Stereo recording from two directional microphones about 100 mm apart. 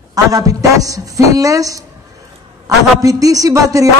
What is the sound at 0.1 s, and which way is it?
A man's voice, 35° right (ahead or behind).